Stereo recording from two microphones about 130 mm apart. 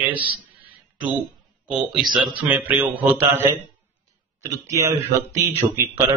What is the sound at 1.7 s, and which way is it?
Speech, 5° right (ahead or behind).